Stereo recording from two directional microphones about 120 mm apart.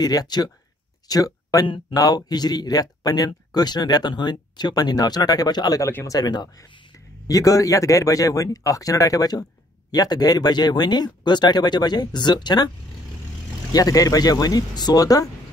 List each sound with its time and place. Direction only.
0.0 s speech: 35° left (ahead or behind)
5.9 s speech: 20° left (ahead or behind)
6.1 s a man's voice: 35° left (ahead or behind)